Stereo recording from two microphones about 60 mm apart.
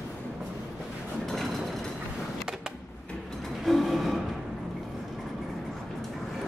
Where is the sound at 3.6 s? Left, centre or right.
Centre.